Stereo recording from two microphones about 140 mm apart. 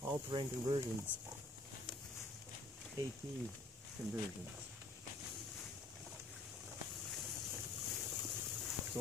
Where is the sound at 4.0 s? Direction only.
15° right (ahead or behind).